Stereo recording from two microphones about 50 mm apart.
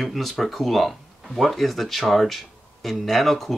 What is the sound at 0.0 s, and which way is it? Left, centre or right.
Speech, centre.